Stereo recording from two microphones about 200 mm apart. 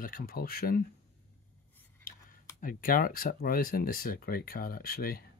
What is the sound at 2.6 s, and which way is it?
Speech, 45° left (ahead or behind).